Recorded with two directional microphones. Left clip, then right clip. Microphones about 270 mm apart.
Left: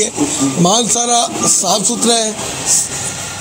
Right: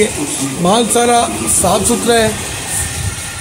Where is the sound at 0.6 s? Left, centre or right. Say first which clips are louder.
Right 3 dB; left.